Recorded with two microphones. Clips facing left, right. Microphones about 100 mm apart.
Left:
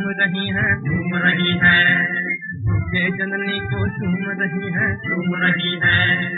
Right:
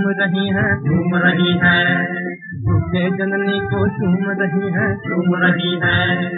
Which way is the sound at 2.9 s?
35° right (ahead or behind).